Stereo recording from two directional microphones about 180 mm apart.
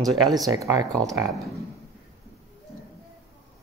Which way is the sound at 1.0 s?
20° right (ahead or behind).